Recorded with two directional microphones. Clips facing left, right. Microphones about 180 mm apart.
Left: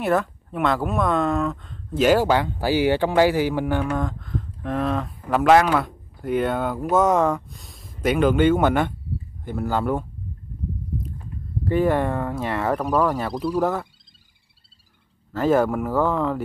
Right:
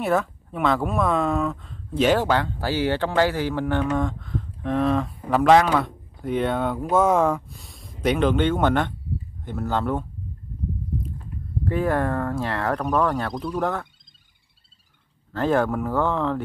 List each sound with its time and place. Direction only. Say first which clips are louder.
0.0 s speech: left 1 dB; centre (ahead or behind)
11.7 s speech: left 3 dB; centre (ahead or behind)
15.3 s speech: left 2 dB; 5° left (ahead or behind)